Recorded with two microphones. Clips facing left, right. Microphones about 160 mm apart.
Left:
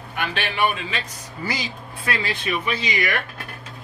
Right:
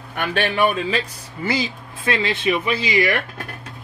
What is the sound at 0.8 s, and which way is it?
Speech, 30° right (ahead or behind).